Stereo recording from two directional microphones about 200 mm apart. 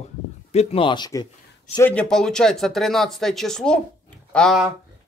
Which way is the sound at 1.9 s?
5° left (ahead or behind).